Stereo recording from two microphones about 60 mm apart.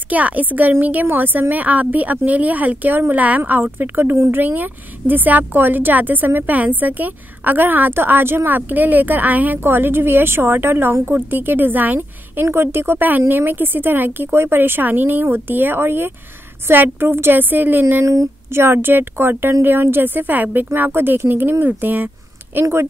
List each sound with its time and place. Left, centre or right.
0.1 s a woman's voice: right
18.0 s a woman's voice: right
18.5 s a woman's voice: right
22.6 s speech: right